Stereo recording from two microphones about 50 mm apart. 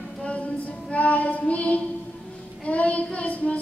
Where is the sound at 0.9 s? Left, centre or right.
Left.